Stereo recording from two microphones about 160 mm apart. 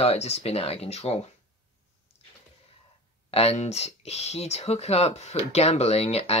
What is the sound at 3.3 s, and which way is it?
Speech, 40° left (ahead or behind).